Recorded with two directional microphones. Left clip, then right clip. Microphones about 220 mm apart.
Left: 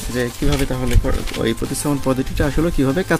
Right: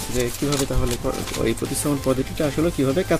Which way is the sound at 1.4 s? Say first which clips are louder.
Left 3 dB; 35° left (ahead or behind).